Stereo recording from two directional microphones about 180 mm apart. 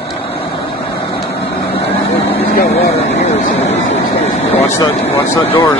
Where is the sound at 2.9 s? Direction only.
35° left (ahead or behind).